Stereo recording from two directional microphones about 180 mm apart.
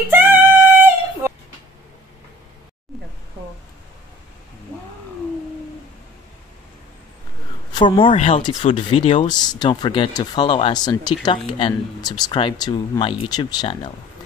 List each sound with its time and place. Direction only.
0.1 s music: 10° right (ahead or behind)
7.7 s speech: 25° left (ahead or behind)